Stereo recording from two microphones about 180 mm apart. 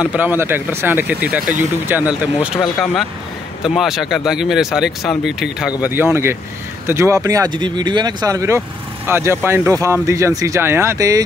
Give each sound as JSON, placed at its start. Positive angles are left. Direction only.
{"t": 0.0, "sound": "speech", "side_deg": -10}